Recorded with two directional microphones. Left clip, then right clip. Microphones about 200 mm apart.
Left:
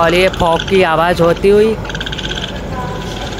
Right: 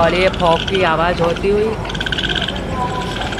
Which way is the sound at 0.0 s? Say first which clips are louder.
Left 2 dB; 25° left (ahead or behind).